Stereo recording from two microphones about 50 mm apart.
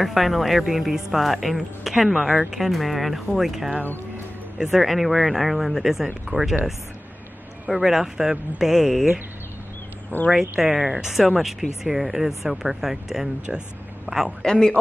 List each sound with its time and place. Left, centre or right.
0.0 s speech: centre
6.3 s speech: right
7.6 s speech: centre
10.1 s speech: left
10.6 s a man's voice: centre
14.4 s a man's voice: centre